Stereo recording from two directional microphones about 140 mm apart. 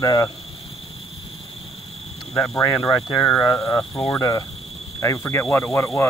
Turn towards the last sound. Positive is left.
turn(degrees=20)  # may be behind; listen again after turning